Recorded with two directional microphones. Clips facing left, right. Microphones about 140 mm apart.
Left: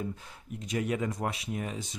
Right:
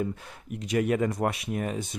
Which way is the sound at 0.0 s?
65° right (ahead or behind).